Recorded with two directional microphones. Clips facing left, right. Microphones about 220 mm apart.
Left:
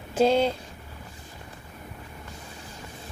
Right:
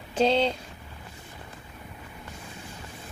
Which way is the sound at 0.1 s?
10° left (ahead or behind).